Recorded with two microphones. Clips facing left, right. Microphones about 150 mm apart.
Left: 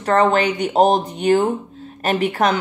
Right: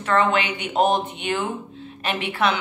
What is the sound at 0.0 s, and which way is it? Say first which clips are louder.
A woman's voice: left 5 dB; 40° left (ahead or behind).